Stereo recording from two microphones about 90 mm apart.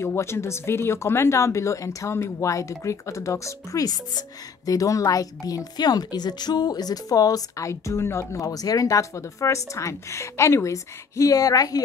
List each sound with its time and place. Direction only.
0.0 s speech: 30° left (ahead or behind)